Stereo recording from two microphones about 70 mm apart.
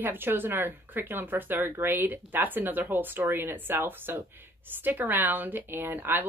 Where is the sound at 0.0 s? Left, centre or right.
Right.